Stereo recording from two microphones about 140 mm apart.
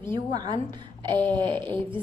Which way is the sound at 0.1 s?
30° right (ahead or behind).